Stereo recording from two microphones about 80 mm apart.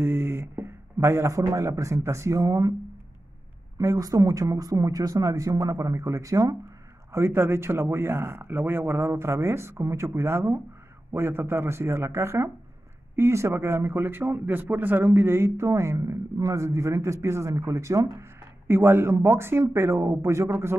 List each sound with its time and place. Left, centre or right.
0.0 s a sound: right
1.4 s speech: right
3.7 s speech: right
7.1 s a man's voice: right
18.7 s a man's voice: right